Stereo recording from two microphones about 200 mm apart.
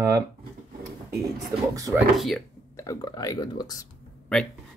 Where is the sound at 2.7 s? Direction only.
20° left (ahead or behind).